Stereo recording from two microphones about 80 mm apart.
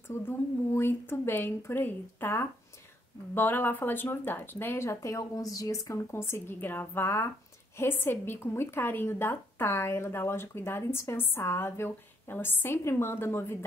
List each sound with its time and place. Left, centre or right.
0.1 s speech: left